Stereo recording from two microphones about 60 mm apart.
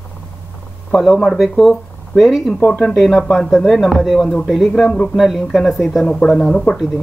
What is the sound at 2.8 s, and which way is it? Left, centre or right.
Speech, centre.